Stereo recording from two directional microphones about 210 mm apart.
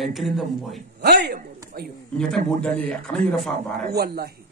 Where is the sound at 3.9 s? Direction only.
50° right (ahead or behind).